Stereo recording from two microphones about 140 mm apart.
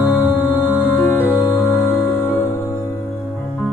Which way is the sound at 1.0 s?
15° left (ahead or behind).